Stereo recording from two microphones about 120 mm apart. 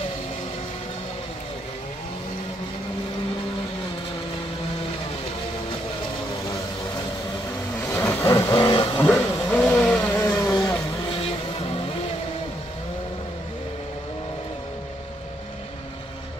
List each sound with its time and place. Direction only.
7.9 s vehicle: 20° left (ahead or behind)
8.6 s vehicle: 40° left (ahead or behind)
9.0 s vehicle: 20° left (ahead or behind)
10.4 s vehicle: 30° left (ahead or behind)
11.1 s vehicle: 50° left (ahead or behind)